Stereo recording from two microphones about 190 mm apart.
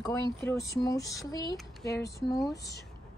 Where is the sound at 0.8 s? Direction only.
15° left (ahead or behind).